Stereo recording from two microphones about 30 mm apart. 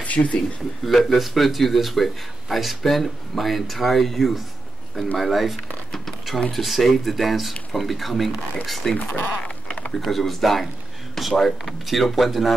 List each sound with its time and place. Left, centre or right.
0.0 s a sound: left
0.8 s speech: centre
8.9 s speech: left
9.4 s sheep: left
10.0 s speech: centre